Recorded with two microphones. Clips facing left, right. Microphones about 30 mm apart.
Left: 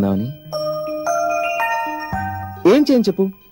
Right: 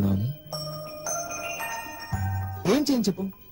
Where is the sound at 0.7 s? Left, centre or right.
Left.